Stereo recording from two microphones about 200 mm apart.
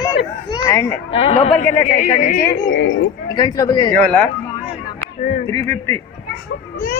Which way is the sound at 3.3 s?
20° left (ahead or behind).